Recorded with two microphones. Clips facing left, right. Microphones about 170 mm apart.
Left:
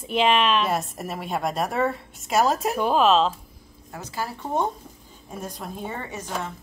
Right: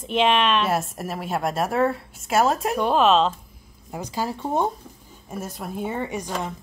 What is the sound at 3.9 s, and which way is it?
A woman's voice, 15° right (ahead or behind).